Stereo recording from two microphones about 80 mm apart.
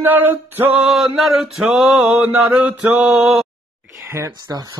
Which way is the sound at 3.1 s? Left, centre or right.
Centre.